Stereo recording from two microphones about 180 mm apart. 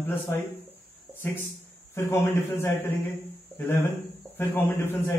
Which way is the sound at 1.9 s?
15° left (ahead or behind).